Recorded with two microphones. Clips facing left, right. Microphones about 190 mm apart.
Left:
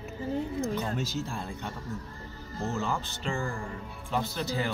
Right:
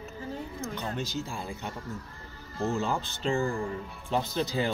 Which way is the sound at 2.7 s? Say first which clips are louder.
Right 2 dB; 15° right (ahead or behind).